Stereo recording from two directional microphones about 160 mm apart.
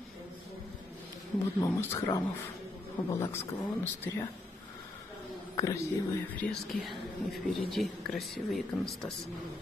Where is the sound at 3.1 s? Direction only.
15° left (ahead or behind).